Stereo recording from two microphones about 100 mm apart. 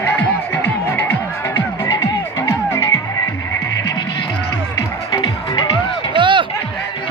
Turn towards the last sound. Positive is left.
turn(degrees=-55)  # may be behind; listen again after turning